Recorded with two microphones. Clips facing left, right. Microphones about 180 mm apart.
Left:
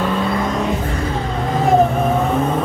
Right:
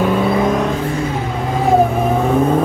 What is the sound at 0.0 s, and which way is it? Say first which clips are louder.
Vehicle: right 4 dB; 10° right (ahead or behind).